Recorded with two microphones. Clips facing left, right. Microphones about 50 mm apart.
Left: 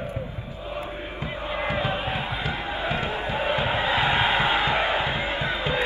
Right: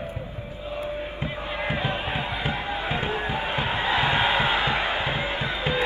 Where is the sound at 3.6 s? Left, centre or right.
Centre.